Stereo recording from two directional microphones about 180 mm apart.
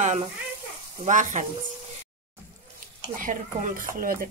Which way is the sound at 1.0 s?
45° right (ahead or behind).